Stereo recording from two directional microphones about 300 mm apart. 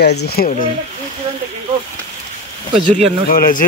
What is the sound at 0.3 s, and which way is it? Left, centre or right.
Speech, left.